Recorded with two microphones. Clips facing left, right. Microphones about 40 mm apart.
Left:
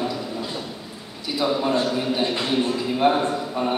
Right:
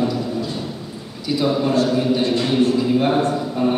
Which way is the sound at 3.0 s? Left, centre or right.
Centre.